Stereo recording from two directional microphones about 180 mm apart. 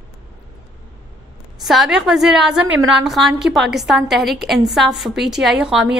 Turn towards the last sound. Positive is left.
turn(degrees=-5)  # may be behind; listen again after turning